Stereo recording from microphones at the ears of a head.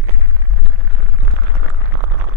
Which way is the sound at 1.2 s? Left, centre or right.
Right.